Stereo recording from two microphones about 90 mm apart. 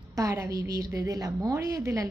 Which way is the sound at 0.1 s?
40° right (ahead or behind).